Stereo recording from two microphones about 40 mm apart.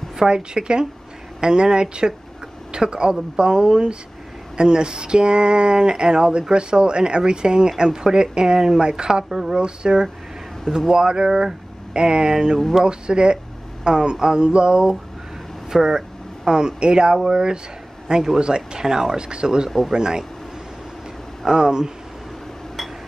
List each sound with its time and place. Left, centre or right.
0.3 s speech: right
21.5 s speech: centre